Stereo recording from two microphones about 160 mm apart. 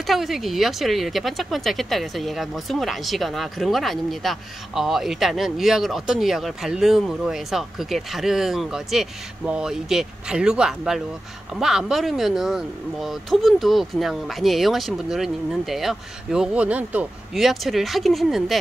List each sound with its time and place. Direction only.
0.0 s speech: centre (ahead or behind)